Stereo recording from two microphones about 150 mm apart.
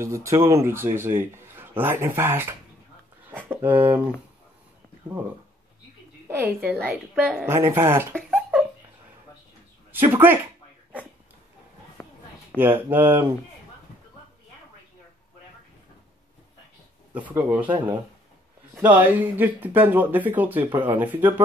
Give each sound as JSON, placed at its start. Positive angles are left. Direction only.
{"t": 0.0, "sound": "speech", "side_deg": -20}
{"t": 3.3, "sound": "a sound", "side_deg": -10}
{"t": 3.7, "sound": "speech", "side_deg": -35}
{"t": 6.2, "sound": "speech", "side_deg": -15}
{"t": 8.2, "sound": "a sound", "side_deg": 0}
{"t": 9.9, "sound": "speech", "side_deg": -15}
{"t": 12.0, "sound": "a sound", "side_deg": 15}
{"t": 12.5, "sound": "speech", "side_deg": 10}
{"t": 12.9, "sound": "speech", "side_deg": -15}
{"t": 17.1, "sound": "speech", "side_deg": -15}
{"t": 18.8, "sound": "speech", "side_deg": -10}